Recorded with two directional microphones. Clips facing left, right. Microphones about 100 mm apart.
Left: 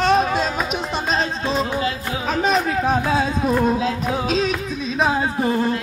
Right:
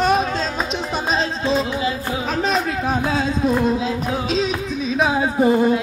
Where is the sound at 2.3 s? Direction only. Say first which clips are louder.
Left 3 dB; centre (ahead or behind).